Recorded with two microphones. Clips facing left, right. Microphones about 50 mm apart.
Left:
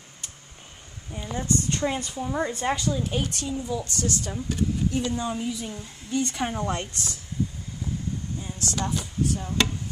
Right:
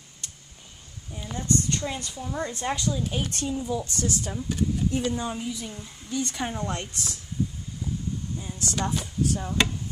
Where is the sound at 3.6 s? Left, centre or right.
Centre.